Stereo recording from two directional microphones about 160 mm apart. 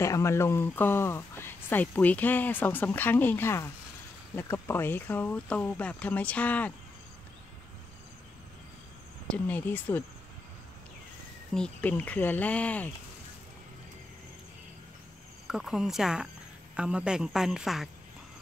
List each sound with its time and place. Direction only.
0.0 s speech: 20° left (ahead or behind)
9.3 s speech: 10° left (ahead or behind)
11.5 s speech: 5° left (ahead or behind)
15.4 s a man's voice: 5° right (ahead or behind)